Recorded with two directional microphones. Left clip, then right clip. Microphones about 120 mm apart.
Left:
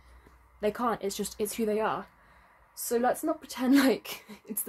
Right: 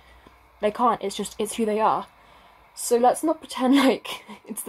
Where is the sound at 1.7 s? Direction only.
25° right (ahead or behind).